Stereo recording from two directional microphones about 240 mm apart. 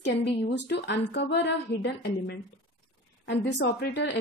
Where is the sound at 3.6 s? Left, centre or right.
Left.